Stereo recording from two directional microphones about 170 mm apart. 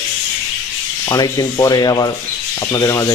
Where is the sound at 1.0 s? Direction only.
20° left (ahead or behind).